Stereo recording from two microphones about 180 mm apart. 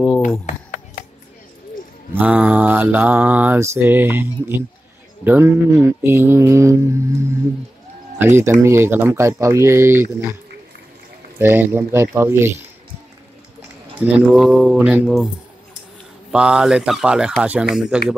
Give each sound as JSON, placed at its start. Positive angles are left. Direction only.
{"t": 0.5, "sound": "a sound", "side_deg": 45}
{"t": 2.1, "sound": "mantra", "side_deg": -10}
{"t": 8.2, "sound": "mantra", "side_deg": -15}
{"t": 11.3, "sound": "mantra", "side_deg": -10}
{"t": 13.6, "sound": "speech", "side_deg": -5}
{"t": 16.3, "sound": "speech", "side_deg": -5}